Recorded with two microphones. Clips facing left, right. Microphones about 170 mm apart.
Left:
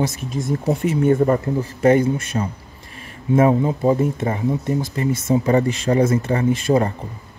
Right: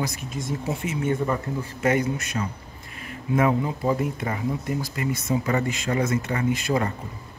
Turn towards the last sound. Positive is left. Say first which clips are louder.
# left 6 dB
turn(degrees=30)  # may be behind; listen again after turning